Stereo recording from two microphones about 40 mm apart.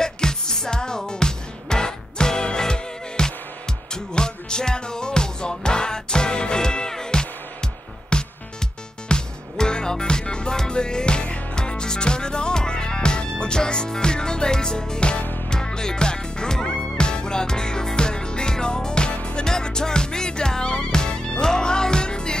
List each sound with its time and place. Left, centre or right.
0.0 s music: centre